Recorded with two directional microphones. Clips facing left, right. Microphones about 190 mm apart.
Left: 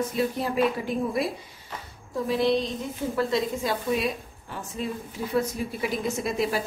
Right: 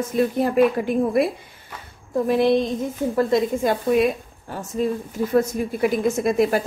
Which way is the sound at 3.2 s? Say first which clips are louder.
Right 6 dB; 50° right (ahead or behind).